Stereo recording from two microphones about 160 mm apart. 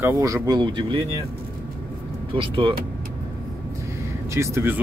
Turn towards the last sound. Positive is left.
turn(degrees=-15)  # may be behind; listen again after turning